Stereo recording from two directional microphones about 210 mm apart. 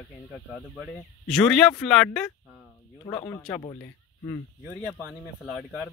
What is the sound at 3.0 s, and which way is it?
Speech, 15° left (ahead or behind).